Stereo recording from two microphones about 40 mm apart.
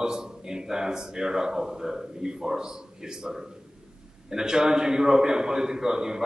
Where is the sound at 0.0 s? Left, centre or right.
Centre.